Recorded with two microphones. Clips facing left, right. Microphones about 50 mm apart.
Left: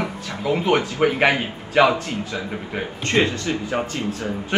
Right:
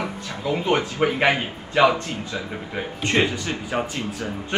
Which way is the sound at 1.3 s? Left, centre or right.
Left.